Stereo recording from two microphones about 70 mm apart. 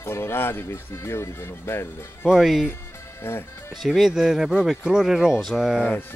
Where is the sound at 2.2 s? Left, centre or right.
Centre.